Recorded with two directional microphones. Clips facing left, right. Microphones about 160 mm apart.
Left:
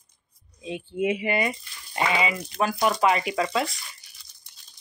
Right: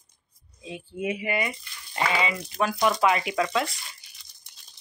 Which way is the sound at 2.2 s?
5° left (ahead or behind).